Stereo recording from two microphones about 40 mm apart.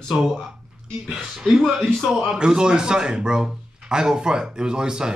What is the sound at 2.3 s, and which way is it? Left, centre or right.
A man's voice, centre.